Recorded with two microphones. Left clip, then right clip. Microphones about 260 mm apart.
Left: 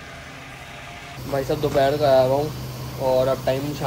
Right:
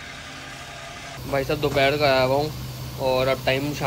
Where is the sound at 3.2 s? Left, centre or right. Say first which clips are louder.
Left 1 dB; right.